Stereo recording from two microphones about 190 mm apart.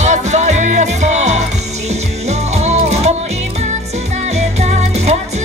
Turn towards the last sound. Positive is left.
turn(degrees=-35)  # may be behind; listen again after turning